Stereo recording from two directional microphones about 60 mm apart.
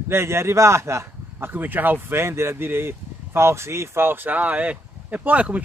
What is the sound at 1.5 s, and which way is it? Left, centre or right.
Speech, right.